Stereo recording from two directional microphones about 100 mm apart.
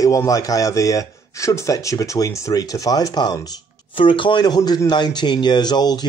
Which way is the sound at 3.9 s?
55° left (ahead or behind).